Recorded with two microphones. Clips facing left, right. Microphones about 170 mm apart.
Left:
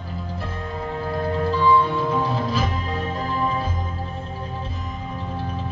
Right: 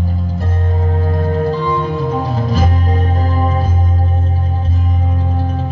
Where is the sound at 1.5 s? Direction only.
45° right (ahead or behind).